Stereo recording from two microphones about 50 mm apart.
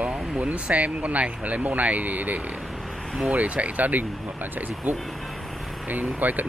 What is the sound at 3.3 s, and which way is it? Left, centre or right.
Speech, right.